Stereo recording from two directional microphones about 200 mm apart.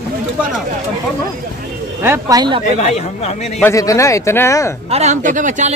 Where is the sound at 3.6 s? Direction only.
15° left (ahead or behind).